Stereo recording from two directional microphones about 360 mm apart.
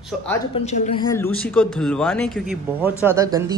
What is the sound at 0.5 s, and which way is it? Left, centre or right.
Speech, centre.